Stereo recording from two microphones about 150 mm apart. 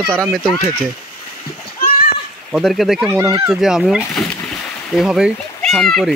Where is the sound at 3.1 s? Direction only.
20° right (ahead or behind).